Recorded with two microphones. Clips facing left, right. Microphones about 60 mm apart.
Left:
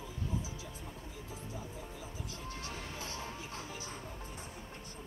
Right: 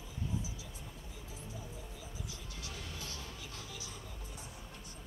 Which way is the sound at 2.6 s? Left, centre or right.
Left.